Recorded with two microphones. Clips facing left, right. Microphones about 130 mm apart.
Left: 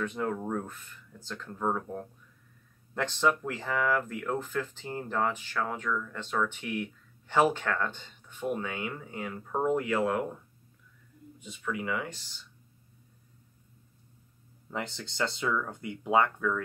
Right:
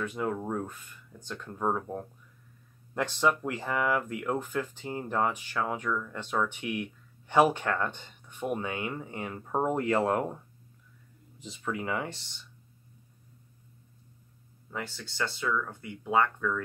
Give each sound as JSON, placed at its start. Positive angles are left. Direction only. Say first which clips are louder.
{"t": 0.0, "sound": "speech", "louder": "even", "side_deg": -10}
{"t": 11.6, "sound": "speech", "louder": "right 1 dB", "side_deg": -30}
{"t": 14.7, "sound": "speech", "louder": "left 2 dB", "side_deg": 20}
{"t": 16.3, "sound": "speech", "louder": "left 1 dB", "side_deg": 10}